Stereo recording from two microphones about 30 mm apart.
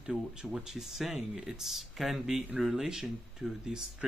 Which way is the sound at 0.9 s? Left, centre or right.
Centre.